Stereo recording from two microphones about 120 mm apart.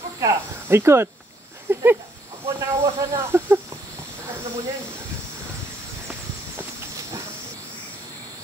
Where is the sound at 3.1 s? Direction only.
20° right (ahead or behind).